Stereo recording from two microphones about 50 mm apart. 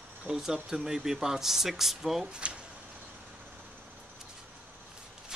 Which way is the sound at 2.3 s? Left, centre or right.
Right.